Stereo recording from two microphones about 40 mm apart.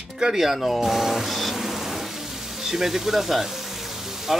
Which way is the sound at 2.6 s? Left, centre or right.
Centre.